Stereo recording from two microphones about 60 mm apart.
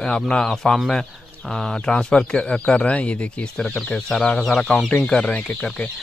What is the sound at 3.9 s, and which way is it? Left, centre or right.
Speech, centre.